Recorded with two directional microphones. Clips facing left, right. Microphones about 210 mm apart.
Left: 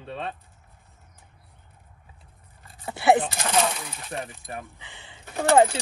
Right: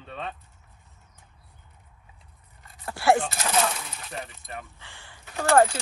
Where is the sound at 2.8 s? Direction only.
20° left (ahead or behind).